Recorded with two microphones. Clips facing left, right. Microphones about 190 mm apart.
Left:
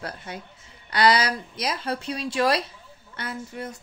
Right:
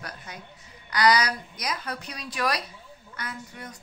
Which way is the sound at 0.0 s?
30° left (ahead or behind).